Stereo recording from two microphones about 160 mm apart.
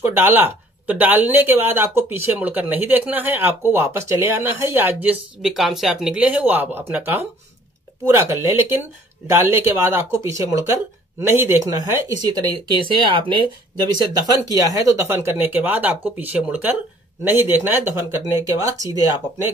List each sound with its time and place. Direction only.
0.0 s speech: 15° right (ahead or behind)